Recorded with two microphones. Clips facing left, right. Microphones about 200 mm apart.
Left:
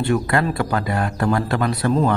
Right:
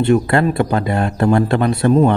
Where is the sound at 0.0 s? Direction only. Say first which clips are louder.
Right 6 dB; 25° right (ahead or behind).